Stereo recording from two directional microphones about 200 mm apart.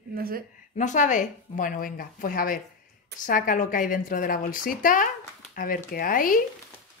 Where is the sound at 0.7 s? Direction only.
40° left (ahead or behind).